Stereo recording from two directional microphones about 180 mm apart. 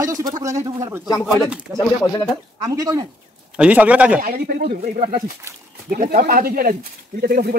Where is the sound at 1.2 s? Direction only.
5° right (ahead or behind).